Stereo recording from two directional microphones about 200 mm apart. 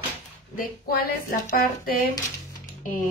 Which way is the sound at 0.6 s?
50° left (ahead or behind).